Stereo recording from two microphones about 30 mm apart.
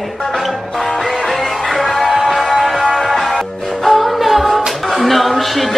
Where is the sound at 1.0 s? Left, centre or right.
Centre.